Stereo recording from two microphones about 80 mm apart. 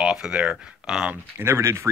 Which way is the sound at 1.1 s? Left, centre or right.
Right.